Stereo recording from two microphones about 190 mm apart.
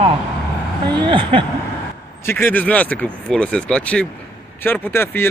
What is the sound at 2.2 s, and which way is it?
Speech, 10° left (ahead or behind).